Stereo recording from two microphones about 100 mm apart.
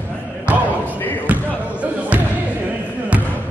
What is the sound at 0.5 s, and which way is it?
Basketball bounce, 15° right (ahead or behind).